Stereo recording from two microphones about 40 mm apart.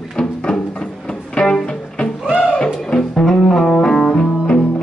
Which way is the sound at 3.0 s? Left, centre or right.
Centre.